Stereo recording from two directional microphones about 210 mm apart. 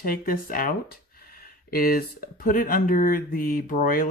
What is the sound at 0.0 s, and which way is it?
Speech, 45° left (ahead or behind).